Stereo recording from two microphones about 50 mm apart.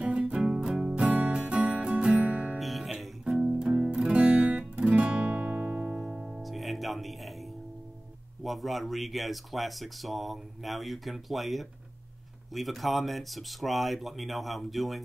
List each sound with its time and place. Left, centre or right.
0.0 s music: right
2.6 s music: centre
3.5 s music: centre
6.2 s music: centre
8.5 s speech: centre